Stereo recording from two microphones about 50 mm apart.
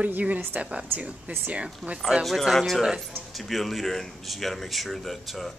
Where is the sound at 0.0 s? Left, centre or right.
Right.